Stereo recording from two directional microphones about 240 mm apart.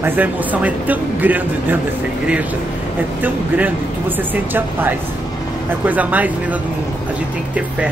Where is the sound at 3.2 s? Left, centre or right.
Centre.